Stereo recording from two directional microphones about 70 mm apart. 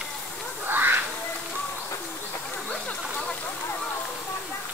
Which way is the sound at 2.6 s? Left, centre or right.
Centre.